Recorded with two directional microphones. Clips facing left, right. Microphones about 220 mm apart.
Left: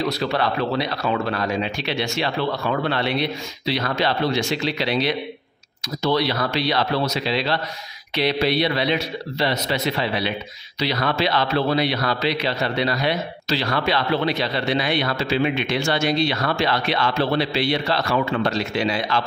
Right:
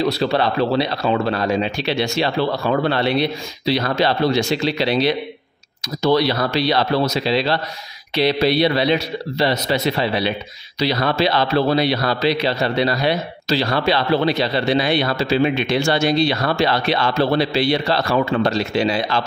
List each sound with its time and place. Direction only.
0.0 s a man's voice: 30° right (ahead or behind)